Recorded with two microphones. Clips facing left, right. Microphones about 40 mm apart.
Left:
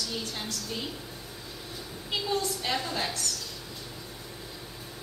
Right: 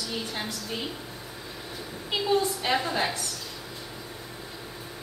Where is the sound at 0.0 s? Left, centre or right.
Centre.